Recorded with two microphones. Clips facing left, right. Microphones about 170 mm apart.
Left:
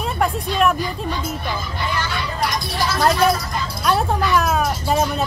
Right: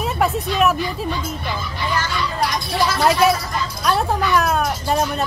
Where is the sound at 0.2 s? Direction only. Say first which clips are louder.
Even; 5° right (ahead or behind).